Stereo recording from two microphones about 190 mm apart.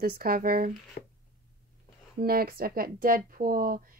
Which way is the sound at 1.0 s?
40° left (ahead or behind).